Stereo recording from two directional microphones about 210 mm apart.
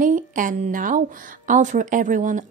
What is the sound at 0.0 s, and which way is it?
A woman's voice, 40° right (ahead or behind).